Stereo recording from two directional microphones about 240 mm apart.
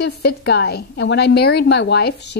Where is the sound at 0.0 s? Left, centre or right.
Left.